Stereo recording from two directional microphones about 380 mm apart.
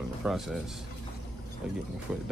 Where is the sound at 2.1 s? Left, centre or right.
Centre.